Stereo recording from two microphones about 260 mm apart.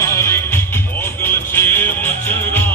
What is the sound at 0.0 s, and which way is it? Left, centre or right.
Music, centre.